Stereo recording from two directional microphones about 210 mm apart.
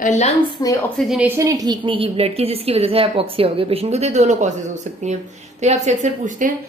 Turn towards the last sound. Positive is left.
turn(degrees=-35)  # may be behind; listen again after turning